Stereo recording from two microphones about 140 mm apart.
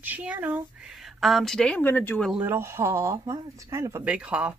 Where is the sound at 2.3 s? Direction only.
15° right (ahead or behind).